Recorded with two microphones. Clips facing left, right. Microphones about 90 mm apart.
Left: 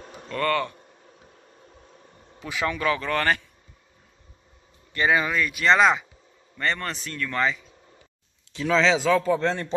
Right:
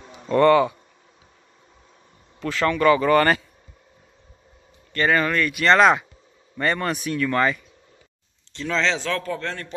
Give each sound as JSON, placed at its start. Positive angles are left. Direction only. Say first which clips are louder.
{"t": 0.1, "sound": "speech", "louder": "right 9 dB", "side_deg": -20}
{"t": 2.4, "sound": "speech", "louder": "right 7 dB", "side_deg": 10}
{"t": 4.9, "sound": "speech", "louder": "right 2 dB", "side_deg": 10}
{"t": 9.2, "sound": "a man's voice", "louder": "left 6 dB", "side_deg": 20}